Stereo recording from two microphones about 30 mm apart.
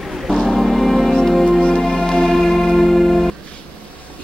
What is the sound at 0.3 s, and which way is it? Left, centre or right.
Music, centre.